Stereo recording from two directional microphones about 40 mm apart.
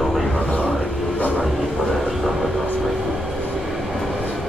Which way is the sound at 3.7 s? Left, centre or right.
Centre.